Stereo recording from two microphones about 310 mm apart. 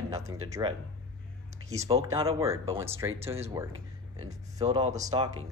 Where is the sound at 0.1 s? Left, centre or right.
Centre.